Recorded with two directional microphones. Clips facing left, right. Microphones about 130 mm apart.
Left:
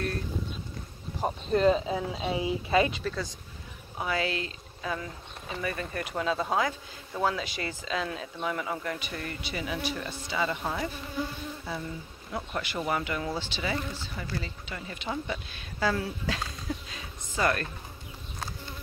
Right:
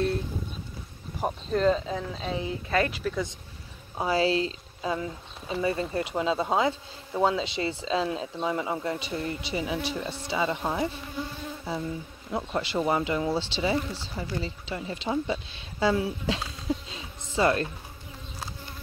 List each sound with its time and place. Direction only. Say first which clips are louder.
1.2 s speech: even; 5° left (ahead or behind)
2.9 s speech: right 2 dB; 5° right (ahead or behind)
4.0 s speech: right 6 dB; 30° right (ahead or behind)
12.3 s speech: right 5 dB; 20° right (ahead or behind)